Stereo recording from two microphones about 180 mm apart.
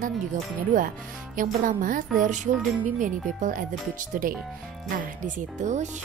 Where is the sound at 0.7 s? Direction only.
50° right (ahead or behind).